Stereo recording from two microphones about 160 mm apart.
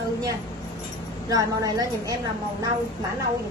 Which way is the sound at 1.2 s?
25° right (ahead or behind).